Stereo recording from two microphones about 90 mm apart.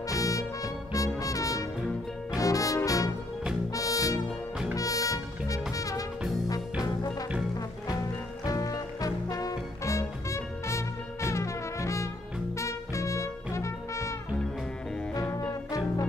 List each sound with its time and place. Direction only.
0.2 s music: 40° left (ahead or behind)
8.5 s music: 40° left (ahead or behind)